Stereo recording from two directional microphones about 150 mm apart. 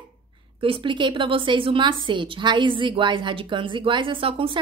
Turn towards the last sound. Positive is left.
turn(degrees=-35)  # may be behind; listen again after turning